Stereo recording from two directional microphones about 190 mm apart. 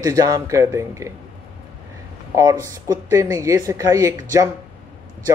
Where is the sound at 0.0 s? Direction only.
20° right (ahead or behind).